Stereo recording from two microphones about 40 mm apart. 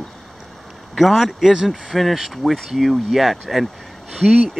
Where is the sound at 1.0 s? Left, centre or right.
Centre.